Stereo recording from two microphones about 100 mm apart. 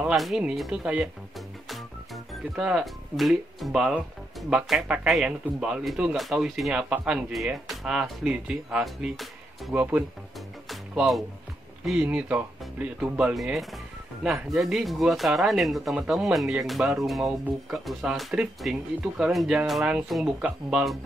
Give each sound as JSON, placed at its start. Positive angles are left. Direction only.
{"t": 0.0, "sound": "speech", "side_deg": 0}
{"t": 2.5, "sound": "speech", "side_deg": -5}
{"t": 9.8, "sound": "speech", "side_deg": -15}
{"t": 10.7, "sound": "music", "side_deg": 0}
{"t": 11.8, "sound": "speech", "side_deg": -5}
{"t": 13.3, "sound": "speech", "side_deg": 0}